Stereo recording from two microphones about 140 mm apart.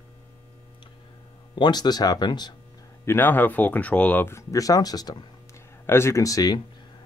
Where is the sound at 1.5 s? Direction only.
30° left (ahead or behind).